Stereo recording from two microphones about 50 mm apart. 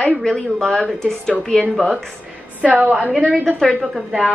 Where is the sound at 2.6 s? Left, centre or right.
Right.